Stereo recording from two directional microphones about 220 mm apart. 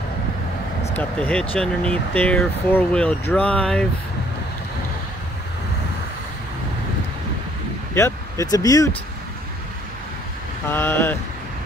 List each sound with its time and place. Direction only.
0.9 s speech: 5° left (ahead or behind)
7.9 s speech: 15° left (ahead or behind)
10.7 s speech: 10° left (ahead or behind)